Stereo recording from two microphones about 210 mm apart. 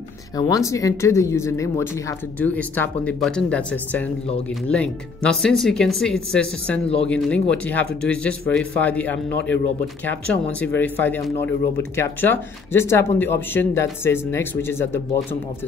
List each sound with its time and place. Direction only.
0.4 s speech: 15° left (ahead or behind)
10.6 s speech: 10° left (ahead or behind)